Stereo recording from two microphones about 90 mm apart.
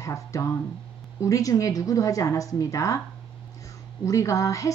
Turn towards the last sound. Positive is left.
turn(degrees=40)  # may be behind; listen again after turning